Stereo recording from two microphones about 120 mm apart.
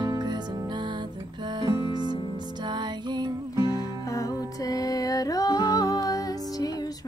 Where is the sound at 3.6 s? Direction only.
30° left (ahead or behind).